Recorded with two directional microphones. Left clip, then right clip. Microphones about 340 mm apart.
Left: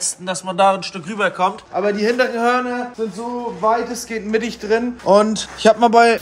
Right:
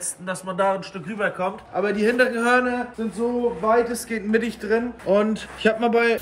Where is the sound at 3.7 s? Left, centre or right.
Centre.